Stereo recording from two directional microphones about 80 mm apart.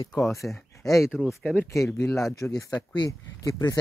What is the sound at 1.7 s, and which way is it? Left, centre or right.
Speech, left.